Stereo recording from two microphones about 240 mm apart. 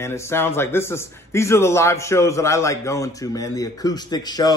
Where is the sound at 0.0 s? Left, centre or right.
Centre.